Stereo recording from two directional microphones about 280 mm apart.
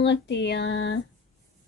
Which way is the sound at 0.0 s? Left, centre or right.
Left.